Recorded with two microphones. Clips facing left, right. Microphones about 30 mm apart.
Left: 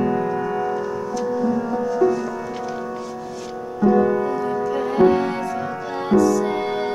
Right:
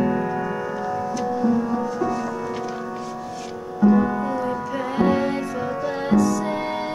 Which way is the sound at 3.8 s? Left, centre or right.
Centre.